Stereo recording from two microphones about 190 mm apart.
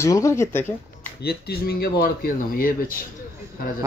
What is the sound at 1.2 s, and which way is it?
Speech, 55° left (ahead or behind).